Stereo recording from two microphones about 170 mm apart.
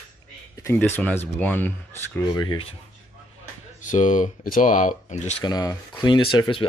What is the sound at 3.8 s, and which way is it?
Speech, 50° left (ahead or behind).